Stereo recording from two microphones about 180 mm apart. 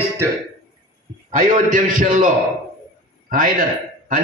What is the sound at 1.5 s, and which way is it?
A man's voice, 45° right (ahead or behind).